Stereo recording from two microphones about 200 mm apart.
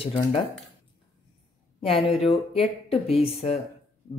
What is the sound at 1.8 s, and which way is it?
Speech, 30° left (ahead or behind).